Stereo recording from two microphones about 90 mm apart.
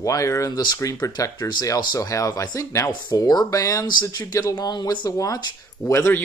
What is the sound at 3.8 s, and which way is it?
Speech, 50° left (ahead or behind).